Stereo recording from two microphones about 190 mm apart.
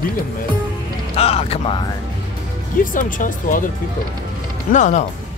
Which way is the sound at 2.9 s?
45° left (ahead or behind).